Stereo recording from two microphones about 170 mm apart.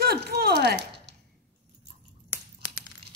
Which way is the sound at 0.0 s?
65° right (ahead or behind).